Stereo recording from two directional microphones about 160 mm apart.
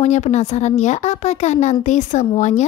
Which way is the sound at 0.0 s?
45° left (ahead or behind).